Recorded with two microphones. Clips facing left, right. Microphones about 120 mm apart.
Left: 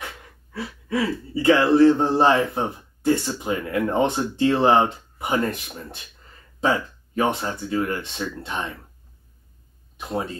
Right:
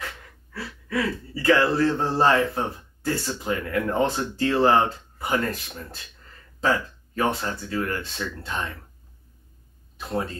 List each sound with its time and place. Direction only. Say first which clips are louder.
0.0 s speech: even; 20° left (ahead or behind)
3.5 s speech: left 2 dB; 30° left (ahead or behind)
6.6 s speech: left 2 dB; 25° left (ahead or behind)